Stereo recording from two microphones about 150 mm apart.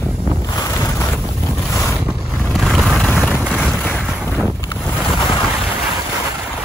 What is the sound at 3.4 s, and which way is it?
Boat, 5° right (ahead or behind).